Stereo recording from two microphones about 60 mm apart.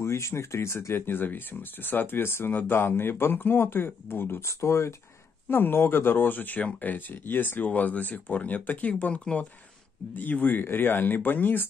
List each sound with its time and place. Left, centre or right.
0.0 s speech: left
5.5 s speech: left; by 9.5 s centre
10.1 s speech: left